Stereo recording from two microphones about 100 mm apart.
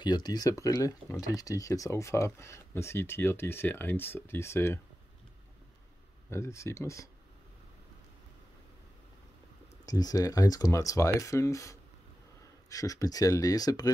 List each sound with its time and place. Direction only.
0.0 s speech: 45° left (ahead or behind); by 4.7 s 25° left (ahead or behind)
6.3 s speech: 30° left (ahead or behind)
9.8 s speech: 40° left (ahead or behind)